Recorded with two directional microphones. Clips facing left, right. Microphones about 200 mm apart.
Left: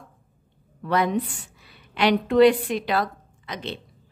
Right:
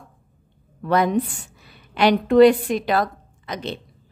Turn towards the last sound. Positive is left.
turn(degrees=-45)  # may be behind; listen again after turning